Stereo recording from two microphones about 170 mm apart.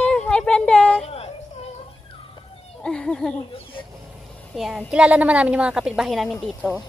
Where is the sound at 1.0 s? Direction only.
35° left (ahead or behind).